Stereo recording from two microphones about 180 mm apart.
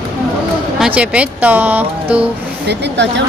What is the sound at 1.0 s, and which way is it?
Speech, 5° right (ahead or behind).